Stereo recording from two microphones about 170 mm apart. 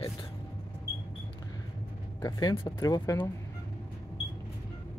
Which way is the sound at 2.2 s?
20° left (ahead or behind).